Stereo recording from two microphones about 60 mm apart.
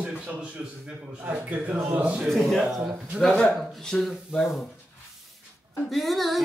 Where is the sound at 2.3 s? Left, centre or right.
Centre.